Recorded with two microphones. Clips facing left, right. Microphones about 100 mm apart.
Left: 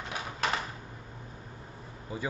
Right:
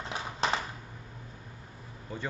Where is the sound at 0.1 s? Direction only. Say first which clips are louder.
Right 1 dB; 30° right (ahead or behind).